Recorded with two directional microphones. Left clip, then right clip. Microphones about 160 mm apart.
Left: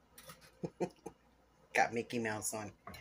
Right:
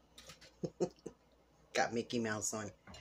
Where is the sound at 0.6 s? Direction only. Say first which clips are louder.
Right 1 dB; 15° right (ahead or behind).